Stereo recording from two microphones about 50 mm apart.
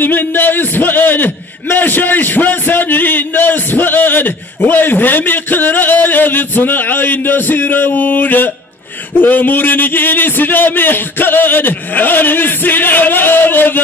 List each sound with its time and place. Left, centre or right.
0.0 s a man's voice: left